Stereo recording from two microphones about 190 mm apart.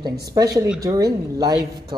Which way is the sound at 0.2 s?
20° right (ahead or behind).